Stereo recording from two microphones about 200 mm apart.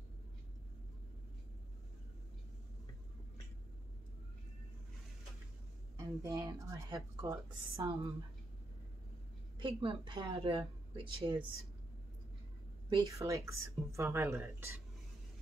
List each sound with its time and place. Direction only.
5.9 s speech: 20° right (ahead or behind)
9.6 s speech: 25° right (ahead or behind)
12.9 s speech: 15° right (ahead or behind)